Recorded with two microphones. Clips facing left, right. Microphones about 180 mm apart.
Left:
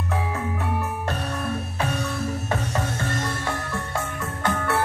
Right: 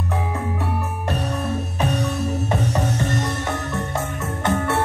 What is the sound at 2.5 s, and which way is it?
Music, 20° right (ahead or behind).